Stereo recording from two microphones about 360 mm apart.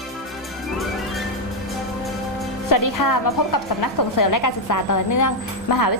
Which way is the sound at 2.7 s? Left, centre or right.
Left.